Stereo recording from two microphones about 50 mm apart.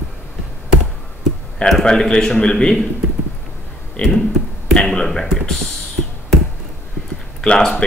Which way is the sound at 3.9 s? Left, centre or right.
Centre.